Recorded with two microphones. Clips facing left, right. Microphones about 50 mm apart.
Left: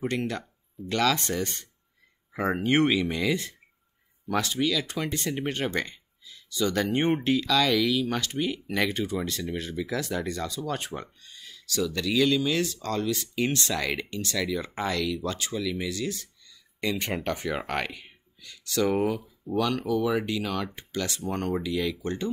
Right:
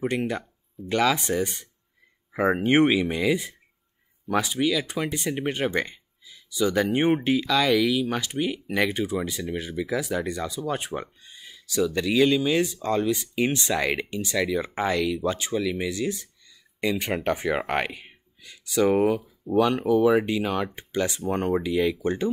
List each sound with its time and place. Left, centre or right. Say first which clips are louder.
0.0 s speech: right 3 dB; centre
18.9 s speech: right 6 dB; centre
19.4 s speech: right 5 dB; centre